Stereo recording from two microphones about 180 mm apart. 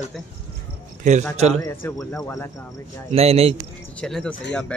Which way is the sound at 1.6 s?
20° left (ahead or behind).